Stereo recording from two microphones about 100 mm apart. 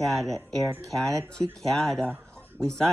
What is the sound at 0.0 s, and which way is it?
Speech, centre (ahead or behind).